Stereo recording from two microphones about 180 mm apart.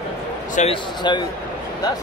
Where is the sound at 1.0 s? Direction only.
25° left (ahead or behind).